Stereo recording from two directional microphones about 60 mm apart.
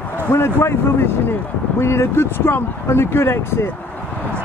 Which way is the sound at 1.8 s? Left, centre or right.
Left.